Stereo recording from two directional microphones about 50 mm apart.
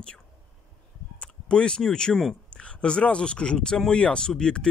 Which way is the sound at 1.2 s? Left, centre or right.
Left.